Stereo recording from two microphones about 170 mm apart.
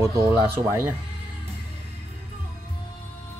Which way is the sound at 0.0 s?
20° right (ahead or behind).